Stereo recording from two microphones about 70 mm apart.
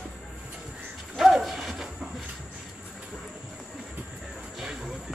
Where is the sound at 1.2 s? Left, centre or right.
Centre.